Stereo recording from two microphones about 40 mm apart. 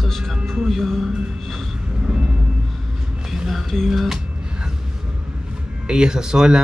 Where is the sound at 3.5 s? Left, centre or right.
Centre.